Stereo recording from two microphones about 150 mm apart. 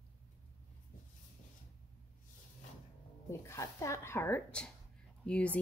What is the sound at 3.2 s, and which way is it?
A woman's voice, 20° left (ahead or behind).